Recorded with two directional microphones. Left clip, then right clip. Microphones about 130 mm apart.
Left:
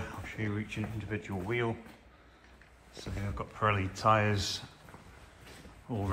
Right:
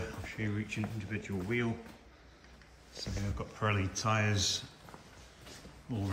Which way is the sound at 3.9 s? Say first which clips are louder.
Left 6 dB; 5° left (ahead or behind).